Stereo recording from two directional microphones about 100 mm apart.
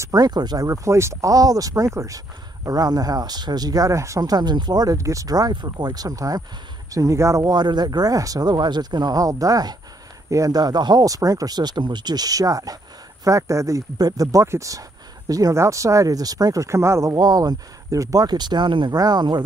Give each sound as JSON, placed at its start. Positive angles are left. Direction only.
{"t": 0.0, "sound": "speech", "side_deg": -40}
{"t": 0.7, "sound": "speech", "side_deg": -30}